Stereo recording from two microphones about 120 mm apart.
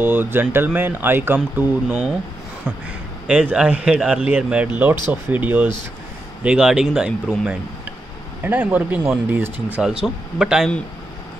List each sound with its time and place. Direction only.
0.0 s speech: 15° right (ahead or behind)
3.3 s a man's voice: 10° right (ahead or behind)